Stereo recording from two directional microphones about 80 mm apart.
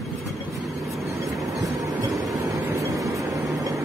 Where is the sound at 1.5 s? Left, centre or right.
Right.